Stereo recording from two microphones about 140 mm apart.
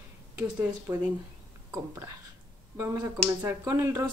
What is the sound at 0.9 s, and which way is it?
Speech, 20° right (ahead or behind).